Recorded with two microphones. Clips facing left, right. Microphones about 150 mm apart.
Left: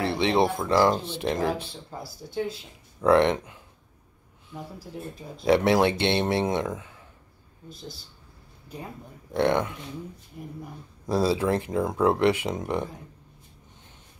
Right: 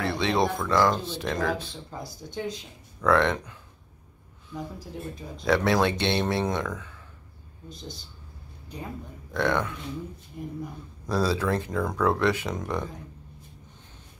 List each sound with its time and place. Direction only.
0.0 s speech: 25° left (ahead or behind)
1.9 s speech: 5° left (ahead or behind)
3.0 s speech: 25° left (ahead or behind)
4.6 s speech: 5° left (ahead or behind)
5.4 s speech: 25° left (ahead or behind)
9.3 s speech: 25° left (ahead or behind)
11.1 s speech: 25° left (ahead or behind)